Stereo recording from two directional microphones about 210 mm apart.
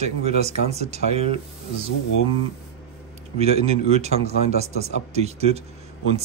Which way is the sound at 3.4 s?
30° right (ahead or behind).